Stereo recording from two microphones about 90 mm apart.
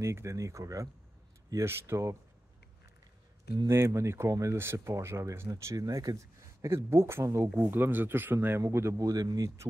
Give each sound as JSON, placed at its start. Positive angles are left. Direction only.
{"t": 0.0, "sound": "speech", "side_deg": -30}
{"t": 3.6, "sound": "speech", "side_deg": -35}